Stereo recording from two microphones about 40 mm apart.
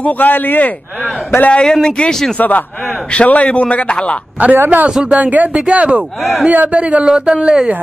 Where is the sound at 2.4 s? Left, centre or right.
Left.